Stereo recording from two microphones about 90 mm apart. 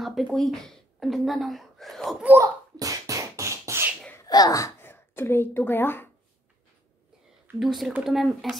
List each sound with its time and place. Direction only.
0.0 s speech: centre (ahead or behind)
2.4 s beatboxing: 40° right (ahead or behind)
4.2 s a child's voice: 45° left (ahead or behind)
4.8 s speech: 25° left (ahead or behind)
7.5 s speech: centre (ahead or behind)